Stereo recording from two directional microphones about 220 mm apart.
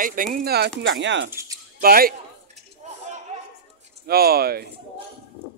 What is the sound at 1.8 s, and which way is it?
Speech, 40° right (ahead or behind).